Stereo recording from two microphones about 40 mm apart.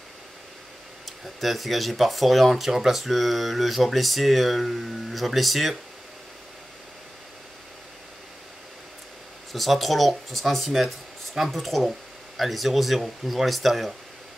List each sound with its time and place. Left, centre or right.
1.0 s speech: centre
9.5 s speech: centre